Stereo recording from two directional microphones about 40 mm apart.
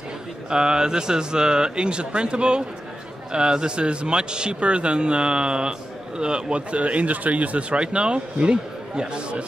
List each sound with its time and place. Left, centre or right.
0.5 s speech: centre